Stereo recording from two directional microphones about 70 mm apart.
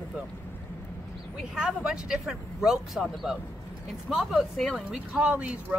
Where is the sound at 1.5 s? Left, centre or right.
Centre.